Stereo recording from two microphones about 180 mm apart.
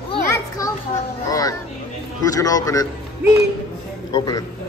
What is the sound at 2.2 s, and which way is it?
Speech, 20° left (ahead or behind).